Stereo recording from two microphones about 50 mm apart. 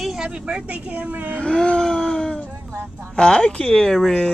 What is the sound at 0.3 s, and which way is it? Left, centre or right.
Speech, right.